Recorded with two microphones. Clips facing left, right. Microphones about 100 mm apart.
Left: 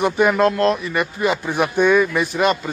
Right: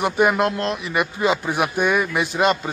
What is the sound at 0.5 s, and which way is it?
Speech, 40° left (ahead or behind).